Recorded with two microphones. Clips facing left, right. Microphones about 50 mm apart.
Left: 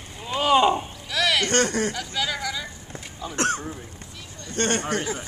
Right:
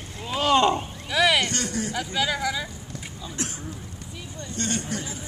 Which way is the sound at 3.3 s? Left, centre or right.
Left.